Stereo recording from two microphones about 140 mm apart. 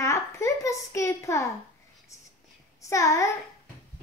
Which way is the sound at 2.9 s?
20° left (ahead or behind).